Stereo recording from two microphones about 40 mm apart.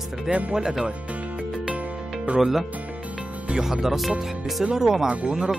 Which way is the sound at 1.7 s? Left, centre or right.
Right.